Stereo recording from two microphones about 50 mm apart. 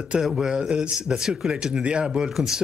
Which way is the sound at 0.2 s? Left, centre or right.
Centre.